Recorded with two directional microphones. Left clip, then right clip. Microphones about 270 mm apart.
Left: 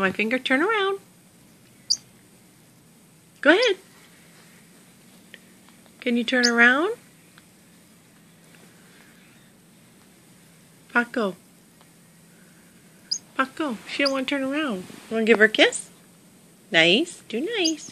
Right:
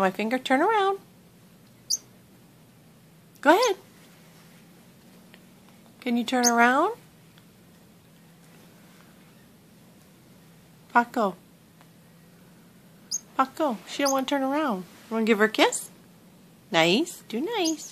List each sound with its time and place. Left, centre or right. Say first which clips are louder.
0.0 s speech: left 2 dB; centre
3.4 s speech: left 2 dB; centre
5.9 s speech: left 3 dB; centre
10.9 s speech: right 1 dB; centre
13.4 s speech: right 2 dB; centre
16.7 s speech: left 4 dB; centre